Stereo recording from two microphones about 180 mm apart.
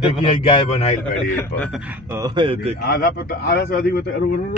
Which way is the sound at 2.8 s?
60° left (ahead or behind).